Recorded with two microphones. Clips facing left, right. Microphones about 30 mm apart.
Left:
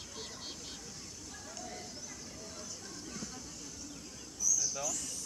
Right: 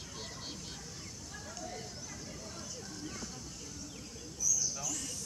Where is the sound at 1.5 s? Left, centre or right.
Centre.